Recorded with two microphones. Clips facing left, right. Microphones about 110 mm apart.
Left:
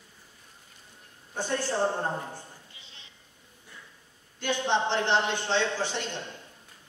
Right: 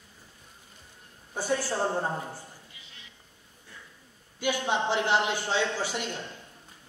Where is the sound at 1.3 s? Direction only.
10° right (ahead or behind).